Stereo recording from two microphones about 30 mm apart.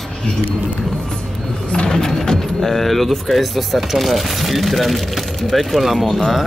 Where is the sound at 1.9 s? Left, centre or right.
Left.